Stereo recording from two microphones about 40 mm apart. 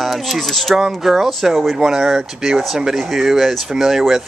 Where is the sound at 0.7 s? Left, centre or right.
Centre.